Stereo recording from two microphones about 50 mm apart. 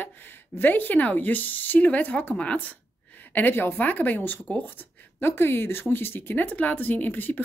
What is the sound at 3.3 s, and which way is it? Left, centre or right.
A woman's voice, left.